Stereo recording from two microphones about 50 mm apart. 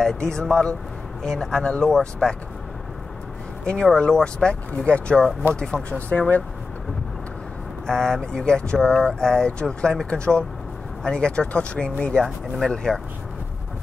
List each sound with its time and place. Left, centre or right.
0.0 s speech: centre
3.6 s speech: centre
5.9 s speech: left
7.8 s speech: centre